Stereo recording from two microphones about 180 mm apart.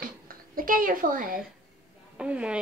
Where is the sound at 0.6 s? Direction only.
50° right (ahead or behind).